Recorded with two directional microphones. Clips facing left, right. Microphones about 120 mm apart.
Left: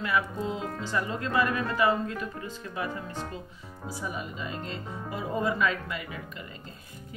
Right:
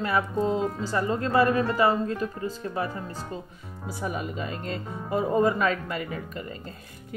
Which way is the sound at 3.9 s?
55° right (ahead or behind).